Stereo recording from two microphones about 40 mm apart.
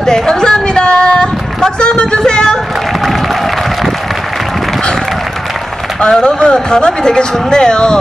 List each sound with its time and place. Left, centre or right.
0.0 s a sound: centre
3.0 s applause: centre
5.9 s speech: centre